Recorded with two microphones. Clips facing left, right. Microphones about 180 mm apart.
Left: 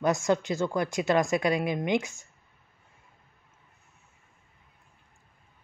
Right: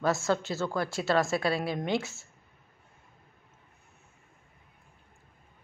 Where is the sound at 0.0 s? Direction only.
15° left (ahead or behind).